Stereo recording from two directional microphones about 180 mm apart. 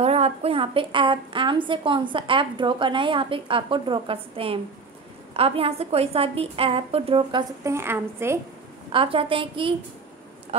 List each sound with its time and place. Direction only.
0.0 s a woman's voice: 35° right (ahead or behind); by 8.4 s 15° right (ahead or behind)
8.9 s a woman's voice: 30° right (ahead or behind)